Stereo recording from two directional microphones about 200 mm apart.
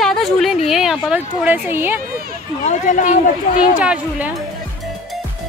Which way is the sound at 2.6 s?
40° left (ahead or behind).